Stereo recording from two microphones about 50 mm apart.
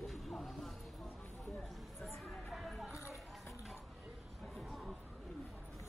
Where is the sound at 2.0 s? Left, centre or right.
Centre.